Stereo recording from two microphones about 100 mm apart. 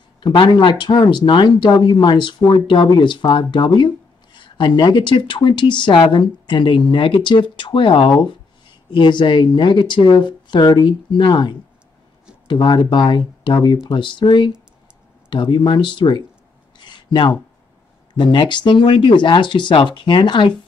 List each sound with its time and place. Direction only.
0.2 s speech: 55° left (ahead or behind)
16.7 s a sound: 50° left (ahead or behind)
18.1 s speech: 50° left (ahead or behind)